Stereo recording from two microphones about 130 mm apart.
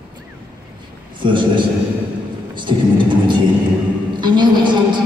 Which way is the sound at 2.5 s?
35° right (ahead or behind).